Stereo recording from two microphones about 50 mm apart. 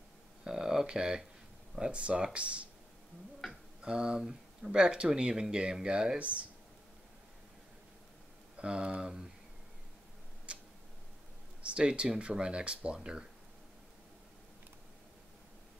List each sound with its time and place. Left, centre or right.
0.4 s a sound: centre
1.8 s speech: right
3.4 s tick-tock: centre
3.8 s speech: centre
6.1 s speech: right
8.5 s speech: right
10.5 s tick-tock: right
11.6 s speech: right